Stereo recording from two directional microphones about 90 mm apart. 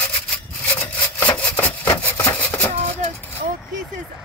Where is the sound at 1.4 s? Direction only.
15° left (ahead or behind).